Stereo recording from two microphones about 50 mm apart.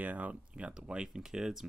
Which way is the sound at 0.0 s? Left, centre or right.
Right.